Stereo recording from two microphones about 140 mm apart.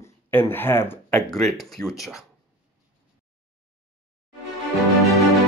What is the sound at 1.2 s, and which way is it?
Speech, 5° left (ahead or behind).